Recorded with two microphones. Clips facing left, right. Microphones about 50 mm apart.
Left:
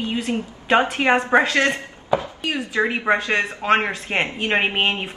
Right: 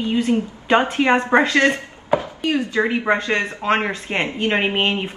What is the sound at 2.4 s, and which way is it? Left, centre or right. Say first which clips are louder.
Speech: right 4 dB; left.